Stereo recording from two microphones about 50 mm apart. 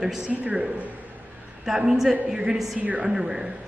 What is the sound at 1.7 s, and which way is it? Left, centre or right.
A man's voice, centre.